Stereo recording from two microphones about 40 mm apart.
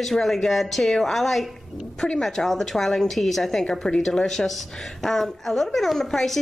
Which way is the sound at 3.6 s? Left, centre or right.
Left.